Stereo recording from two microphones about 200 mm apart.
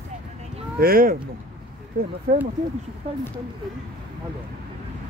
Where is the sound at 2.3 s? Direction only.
50° right (ahead or behind).